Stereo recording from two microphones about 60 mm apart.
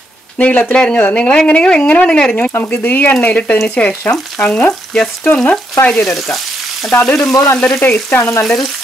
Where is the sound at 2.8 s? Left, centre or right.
Left.